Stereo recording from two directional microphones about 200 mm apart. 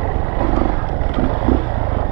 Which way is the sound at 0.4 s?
20° right (ahead or behind).